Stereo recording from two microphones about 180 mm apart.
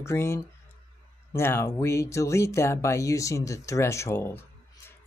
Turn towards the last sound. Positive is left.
turn(degrees=15)  # may be behind; listen again after turning